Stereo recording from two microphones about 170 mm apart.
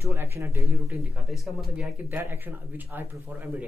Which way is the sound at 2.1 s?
10° right (ahead or behind).